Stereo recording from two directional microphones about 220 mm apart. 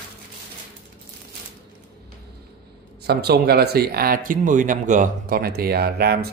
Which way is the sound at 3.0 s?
45° right (ahead or behind).